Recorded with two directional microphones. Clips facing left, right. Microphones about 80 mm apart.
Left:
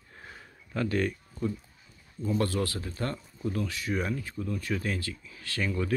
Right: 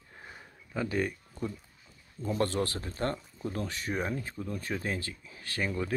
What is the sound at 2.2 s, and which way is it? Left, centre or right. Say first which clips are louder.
Speech: left 1 dB; right.